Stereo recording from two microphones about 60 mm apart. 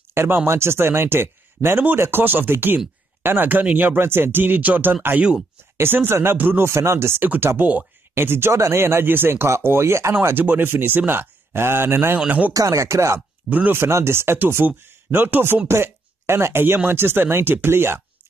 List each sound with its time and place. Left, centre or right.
0.1 s speech: right
6.7 s speech: right
10.4 s speech: right
12.3 s speech: right
12.5 s speech: right
13.5 s speech: right
13.7 s speech: right